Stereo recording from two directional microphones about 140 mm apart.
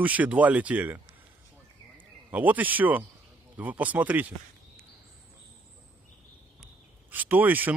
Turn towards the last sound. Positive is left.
turn(degrees=-10)  # may be behind; listen again after turning